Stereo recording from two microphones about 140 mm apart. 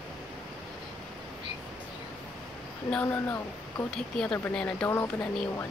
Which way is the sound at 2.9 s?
15° left (ahead or behind).